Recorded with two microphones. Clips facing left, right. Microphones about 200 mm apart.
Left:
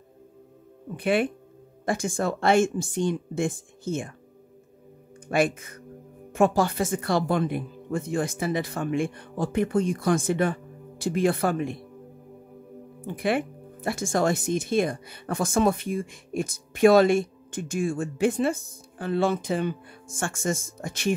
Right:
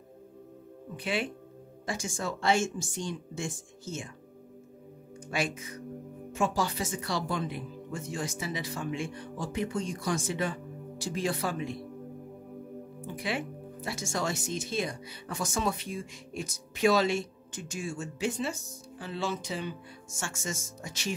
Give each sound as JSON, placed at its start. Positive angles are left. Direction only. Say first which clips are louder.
{"t": 0.9, "sound": "speech", "louder": "left 9 dB", "side_deg": 55}
{"t": 5.3, "sound": "speech", "louder": "left 9 dB", "side_deg": 55}
{"t": 13.0, "sound": "speech", "louder": "left 9 dB", "side_deg": 55}